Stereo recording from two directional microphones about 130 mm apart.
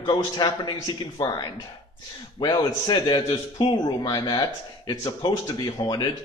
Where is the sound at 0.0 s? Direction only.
30° left (ahead or behind).